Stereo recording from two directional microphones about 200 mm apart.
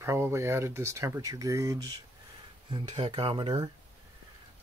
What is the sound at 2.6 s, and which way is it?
Speech, 25° right (ahead or behind).